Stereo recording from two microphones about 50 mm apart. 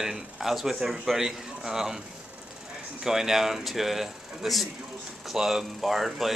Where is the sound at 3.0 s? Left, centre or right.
Centre.